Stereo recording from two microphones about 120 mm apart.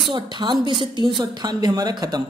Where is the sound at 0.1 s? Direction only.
40° right (ahead or behind).